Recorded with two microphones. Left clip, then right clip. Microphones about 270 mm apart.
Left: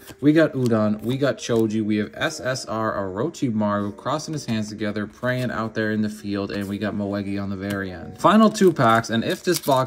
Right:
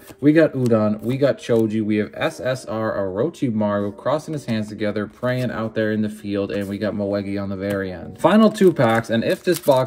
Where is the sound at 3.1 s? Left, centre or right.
Centre.